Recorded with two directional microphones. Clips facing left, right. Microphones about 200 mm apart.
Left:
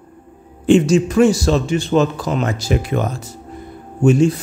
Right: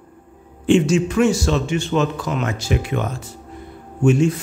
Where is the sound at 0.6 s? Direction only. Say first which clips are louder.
Left 3 dB; 40° left (ahead or behind).